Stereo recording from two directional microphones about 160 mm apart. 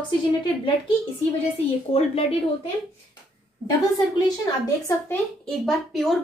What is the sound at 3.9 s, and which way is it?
A woman's voice, 25° left (ahead or behind).